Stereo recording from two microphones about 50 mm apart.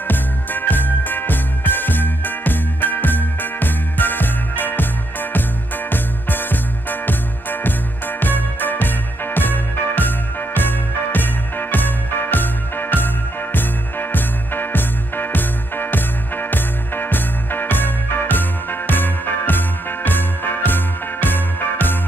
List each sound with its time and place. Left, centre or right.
0.1 s music: left
5.9 s music: left